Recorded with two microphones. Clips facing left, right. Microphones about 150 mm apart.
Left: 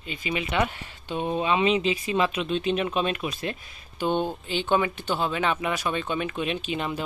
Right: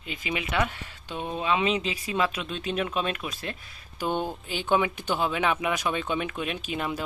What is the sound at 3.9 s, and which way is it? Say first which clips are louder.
Speech: left 3 dB; 10° right (ahead or behind).